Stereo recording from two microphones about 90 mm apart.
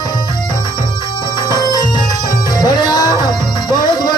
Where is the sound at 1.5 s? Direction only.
50° left (ahead or behind).